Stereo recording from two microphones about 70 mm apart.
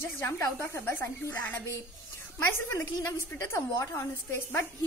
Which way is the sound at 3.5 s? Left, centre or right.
Left.